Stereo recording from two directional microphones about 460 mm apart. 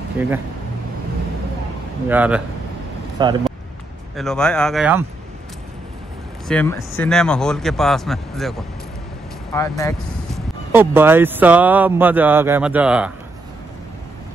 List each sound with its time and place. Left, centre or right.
0.2 s speech: centre
2.0 s speech: centre
6.4 s speech: centre
10.7 s speech: centre